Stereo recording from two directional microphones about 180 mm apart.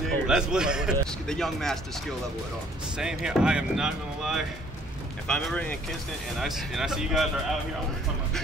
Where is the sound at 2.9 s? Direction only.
5° right (ahead or behind).